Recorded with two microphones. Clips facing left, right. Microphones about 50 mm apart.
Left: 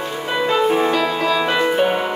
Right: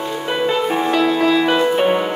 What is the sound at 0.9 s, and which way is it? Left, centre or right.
Music, centre.